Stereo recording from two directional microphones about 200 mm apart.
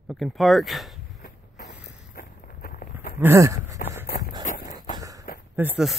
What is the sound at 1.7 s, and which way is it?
Walk, 45° left (ahead or behind).